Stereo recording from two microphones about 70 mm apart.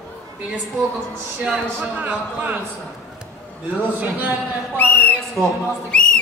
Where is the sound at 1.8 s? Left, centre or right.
Right.